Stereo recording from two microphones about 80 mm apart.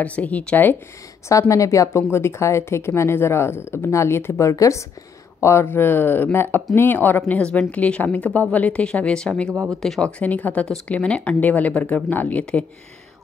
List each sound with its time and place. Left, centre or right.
0.0 s speech: centre
1.5 s speech: left; by 10.0 s centre
10.0 s speech: centre